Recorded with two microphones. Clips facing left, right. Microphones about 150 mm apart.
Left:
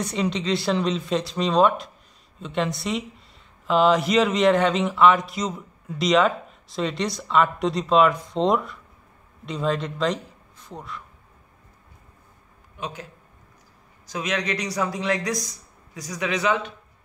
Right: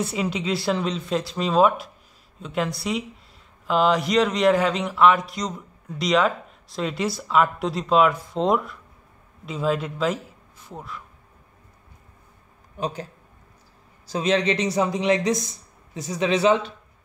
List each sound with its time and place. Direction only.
0.0 s speech: 5° right (ahead or behind)
12.7 s a man's voice: 35° right (ahead or behind)
14.0 s speech: 30° right (ahead or behind)